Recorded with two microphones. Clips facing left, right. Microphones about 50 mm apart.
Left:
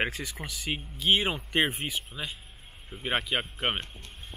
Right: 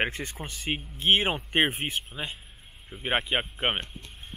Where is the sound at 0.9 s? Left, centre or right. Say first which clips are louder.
Right 2 dB; right.